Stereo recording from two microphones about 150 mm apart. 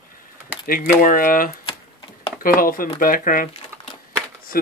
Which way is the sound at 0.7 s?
65° left (ahead or behind).